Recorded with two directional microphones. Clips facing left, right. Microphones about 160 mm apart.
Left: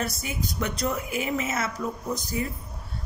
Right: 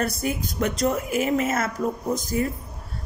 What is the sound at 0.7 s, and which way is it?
Speech, 40° right (ahead or behind).